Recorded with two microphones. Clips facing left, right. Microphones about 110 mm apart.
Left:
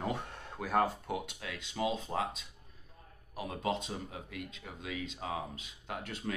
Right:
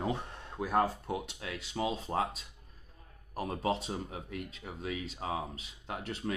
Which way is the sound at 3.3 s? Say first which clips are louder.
Right 2 dB; 40° right (ahead or behind).